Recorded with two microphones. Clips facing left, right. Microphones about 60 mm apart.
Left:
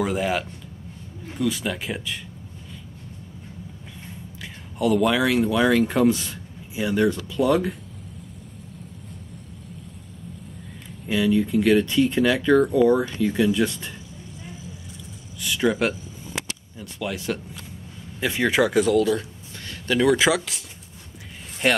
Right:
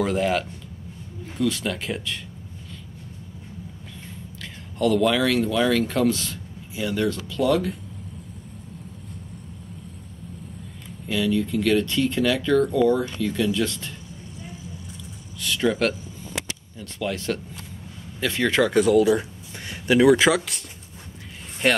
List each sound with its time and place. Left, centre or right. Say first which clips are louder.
0.0 s speech: right 1 dB; centre
4.4 s speech: right 1 dB; centre
11.1 s speech: left 2 dB; centre
15.4 s speech: even; centre
21.6 s speech: even; centre